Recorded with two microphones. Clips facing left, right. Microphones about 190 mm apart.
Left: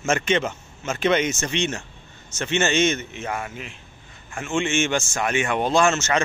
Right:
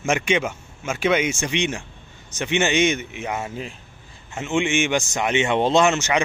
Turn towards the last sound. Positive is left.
turn(degrees=-15)  # may be behind; listen again after turning